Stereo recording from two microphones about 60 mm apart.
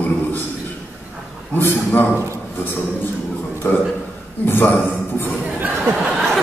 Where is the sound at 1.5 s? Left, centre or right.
Left.